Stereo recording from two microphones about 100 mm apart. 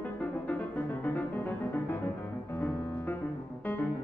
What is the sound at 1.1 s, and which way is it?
Music, 20° left (ahead or behind).